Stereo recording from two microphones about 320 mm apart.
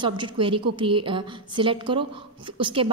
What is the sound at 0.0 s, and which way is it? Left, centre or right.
A woman's voice, centre.